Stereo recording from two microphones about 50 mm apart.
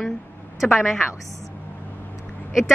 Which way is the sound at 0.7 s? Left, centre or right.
Centre.